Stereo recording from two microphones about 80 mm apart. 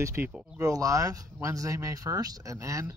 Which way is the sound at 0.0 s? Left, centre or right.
Right.